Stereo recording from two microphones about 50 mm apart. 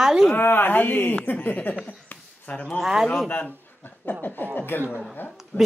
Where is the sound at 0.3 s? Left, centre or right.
Left.